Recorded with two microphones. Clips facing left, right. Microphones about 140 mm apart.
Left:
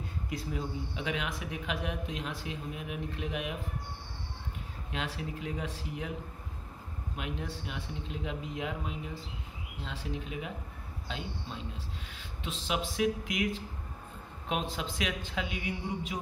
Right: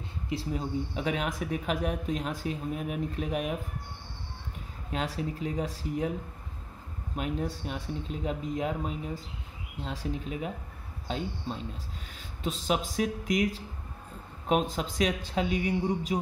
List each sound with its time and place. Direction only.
0.3 s speech: 30° right (ahead or behind)
4.9 s speech: 40° right (ahead or behind)
7.2 s speech: 40° right (ahead or behind)